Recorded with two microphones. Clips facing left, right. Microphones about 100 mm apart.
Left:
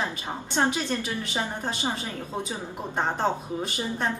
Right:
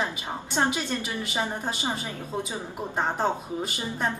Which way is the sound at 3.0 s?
5° right (ahead or behind).